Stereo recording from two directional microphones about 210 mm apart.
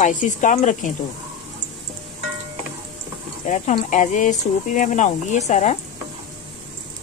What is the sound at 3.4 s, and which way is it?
Speech, 35° left (ahead or behind).